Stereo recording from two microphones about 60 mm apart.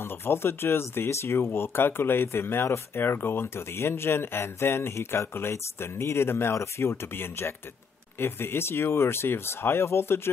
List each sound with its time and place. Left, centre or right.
0.0 s speech: left